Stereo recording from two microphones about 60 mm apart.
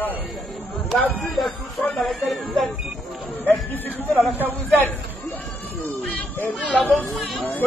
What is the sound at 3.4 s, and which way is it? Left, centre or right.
Speech, left.